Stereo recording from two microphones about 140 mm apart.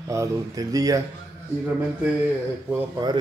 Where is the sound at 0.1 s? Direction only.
25° right (ahead or behind).